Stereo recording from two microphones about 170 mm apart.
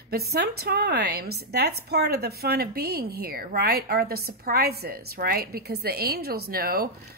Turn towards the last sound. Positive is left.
turn(degrees=-65)  # may be behind; listen again after turning